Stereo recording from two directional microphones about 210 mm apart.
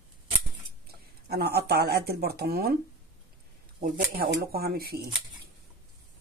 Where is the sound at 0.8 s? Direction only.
50° right (ahead or behind).